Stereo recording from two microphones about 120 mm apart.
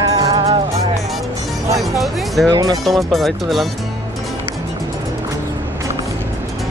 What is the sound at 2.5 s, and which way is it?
Speech, 30° right (ahead or behind).